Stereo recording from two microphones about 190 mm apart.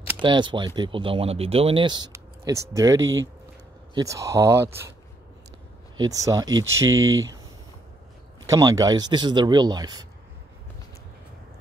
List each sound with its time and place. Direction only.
0.2 s speech: 25° right (ahead or behind)
3.0 s speech: 85° right
3.9 s speech: 15° right (ahead or behind)
5.9 s speech: 20° right (ahead or behind)
8.5 s speech: 20° right (ahead or behind)